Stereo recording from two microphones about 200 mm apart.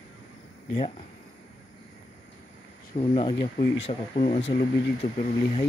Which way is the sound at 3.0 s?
25° left (ahead or behind).